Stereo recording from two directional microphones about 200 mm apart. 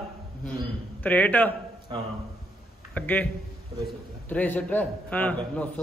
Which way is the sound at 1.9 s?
25° right (ahead or behind).